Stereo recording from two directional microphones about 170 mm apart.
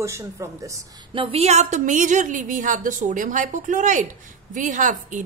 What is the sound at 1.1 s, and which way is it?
A woman's voice, 30° right (ahead or behind).